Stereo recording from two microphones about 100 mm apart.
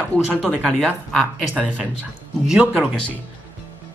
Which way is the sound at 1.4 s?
10° right (ahead or behind).